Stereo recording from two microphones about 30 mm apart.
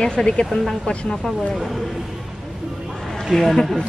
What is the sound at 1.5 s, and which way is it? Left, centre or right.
Speech, centre.